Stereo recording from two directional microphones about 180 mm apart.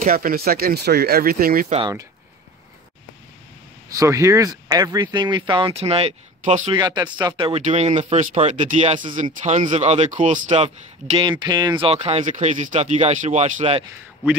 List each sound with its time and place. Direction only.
0.0 s speech: 50° right (ahead or behind)
3.9 s speech: 20° right (ahead or behind); by 6.7 s 40° right (ahead or behind)
6.7 s speech: 25° right (ahead or behind)
11.1 s speech: 25° right (ahead or behind)